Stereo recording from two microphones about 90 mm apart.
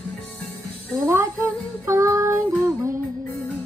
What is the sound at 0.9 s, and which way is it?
Child singing, 30° right (ahead or behind).